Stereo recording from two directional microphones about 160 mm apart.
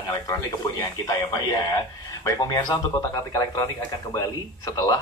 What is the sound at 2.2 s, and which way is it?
Speech, 25° left (ahead or behind).